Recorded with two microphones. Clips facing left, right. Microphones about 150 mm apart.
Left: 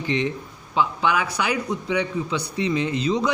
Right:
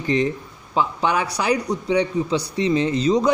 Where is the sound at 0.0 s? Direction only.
40° right (ahead or behind).